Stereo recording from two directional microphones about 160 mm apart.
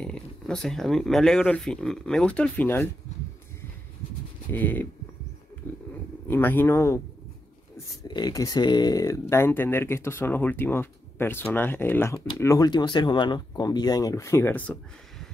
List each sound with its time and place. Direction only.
0.0 s speech: 5° left (ahead or behind)
4.5 s speech: 10° left (ahead or behind)
5.6 s a sound: 10° left (ahead or behind)
6.2 s speech: 15° left (ahead or behind)
8.1 s speech: 25° left (ahead or behind); by 15.2 s 5° left (ahead or behind)